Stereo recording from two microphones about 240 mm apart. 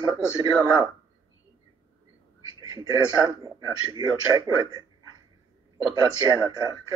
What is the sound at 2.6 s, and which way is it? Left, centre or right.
A man's voice, centre.